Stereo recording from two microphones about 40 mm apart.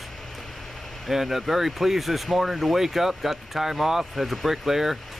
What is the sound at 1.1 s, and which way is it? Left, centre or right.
Speech, centre.